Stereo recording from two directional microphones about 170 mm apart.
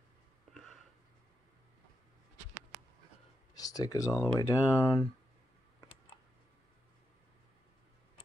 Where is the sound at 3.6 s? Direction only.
20° left (ahead or behind).